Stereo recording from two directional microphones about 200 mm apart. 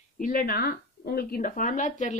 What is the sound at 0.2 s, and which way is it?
Speech, 45° left (ahead or behind).